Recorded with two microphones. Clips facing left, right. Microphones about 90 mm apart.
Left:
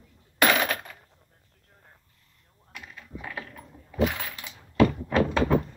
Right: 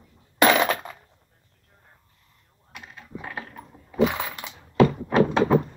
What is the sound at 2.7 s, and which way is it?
Typing, 25° right (ahead or behind).